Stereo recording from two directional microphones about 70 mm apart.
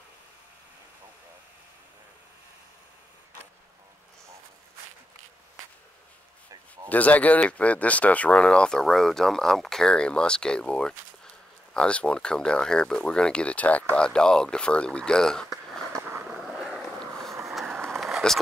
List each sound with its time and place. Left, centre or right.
6.9 s speech: left
15.5 s a sound: centre
16.0 s skateboard: right
16.3 s boat: centre
17.0 s vehicle: centre
17.5 s skateboard: centre
17.9 s a sound: centre